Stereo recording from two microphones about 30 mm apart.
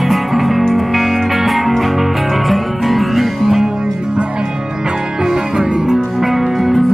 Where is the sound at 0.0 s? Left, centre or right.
Centre.